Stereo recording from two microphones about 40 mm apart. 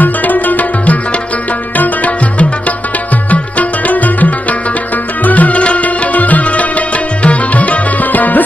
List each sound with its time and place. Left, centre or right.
0.0 s music: left
3.3 s music: left